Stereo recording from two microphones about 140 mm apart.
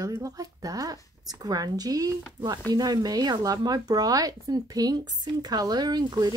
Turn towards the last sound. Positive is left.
turn(degrees=-30)  # may be behind; listen again after turning